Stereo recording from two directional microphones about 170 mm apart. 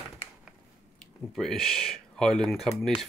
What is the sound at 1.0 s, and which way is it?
Speech, 5° left (ahead or behind).